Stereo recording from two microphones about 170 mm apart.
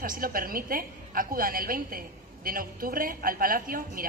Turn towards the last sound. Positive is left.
turn(degrees=-55)  # may be behind; listen again after turning